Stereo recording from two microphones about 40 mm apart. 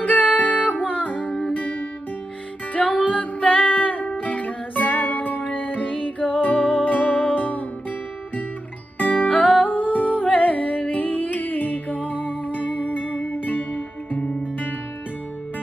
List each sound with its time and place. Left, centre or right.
0.0 s music: left
2.7 s music: left
8.9 s music: left